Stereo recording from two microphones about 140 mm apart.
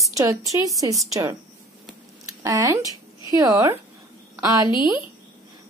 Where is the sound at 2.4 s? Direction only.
25° right (ahead or behind).